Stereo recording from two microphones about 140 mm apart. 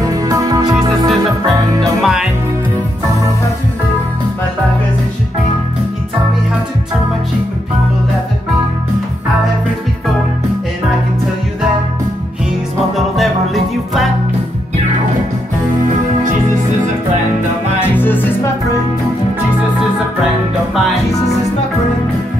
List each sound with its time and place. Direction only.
0.0 s music: 25° right (ahead or behind)
1.8 s music: centre (ahead or behind)
17.9 s music: 15° left (ahead or behind)